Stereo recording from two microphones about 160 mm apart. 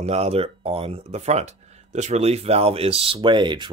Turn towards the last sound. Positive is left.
turn(degrees=-30)  # may be behind; listen again after turning